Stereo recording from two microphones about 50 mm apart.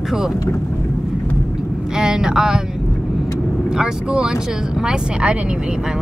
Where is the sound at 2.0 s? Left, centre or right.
Centre.